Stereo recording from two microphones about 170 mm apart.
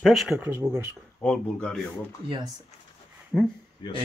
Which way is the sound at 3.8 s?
25° left (ahead or behind).